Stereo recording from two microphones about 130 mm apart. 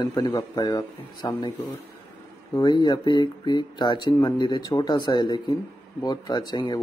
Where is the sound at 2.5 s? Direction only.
35° left (ahead or behind).